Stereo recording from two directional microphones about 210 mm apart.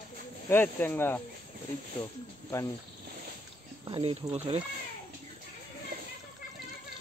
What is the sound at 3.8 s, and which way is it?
Speech, 25° right (ahead or behind).